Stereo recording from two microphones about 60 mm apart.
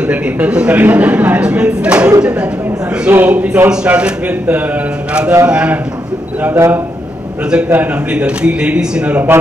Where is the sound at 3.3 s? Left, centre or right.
Centre.